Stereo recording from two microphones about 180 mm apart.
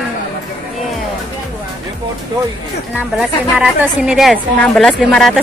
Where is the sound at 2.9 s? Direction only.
5° right (ahead or behind).